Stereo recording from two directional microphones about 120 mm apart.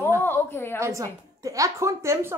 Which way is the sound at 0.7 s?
25° right (ahead or behind).